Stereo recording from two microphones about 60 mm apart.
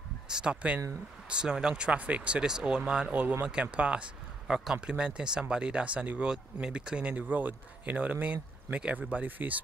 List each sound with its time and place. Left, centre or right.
0.3 s speech: centre